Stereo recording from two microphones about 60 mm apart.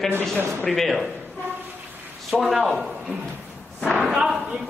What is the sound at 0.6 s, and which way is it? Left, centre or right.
Speech, centre.